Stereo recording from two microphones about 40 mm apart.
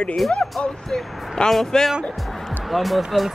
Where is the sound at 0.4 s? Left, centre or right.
Centre.